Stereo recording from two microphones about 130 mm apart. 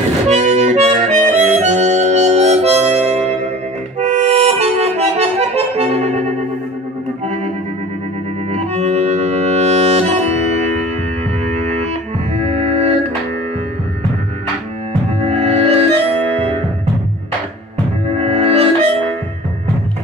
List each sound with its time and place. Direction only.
0.3 s music: 60° right (ahead or behind)
4.0 s accordion: 55° right (ahead or behind)
8.5 s music: 55° right (ahead or behind)
11.4 s music: 55° right (ahead or behind)
15.1 s music: 55° right (ahead or behind)
18.0 s music: 50° right (ahead or behind)